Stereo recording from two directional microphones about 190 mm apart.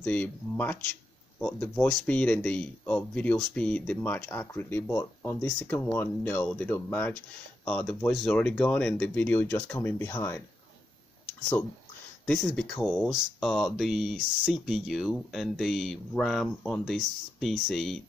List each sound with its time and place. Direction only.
0.0 s speech: 10° left (ahead or behind)
12.3 s speech: 5° left (ahead or behind)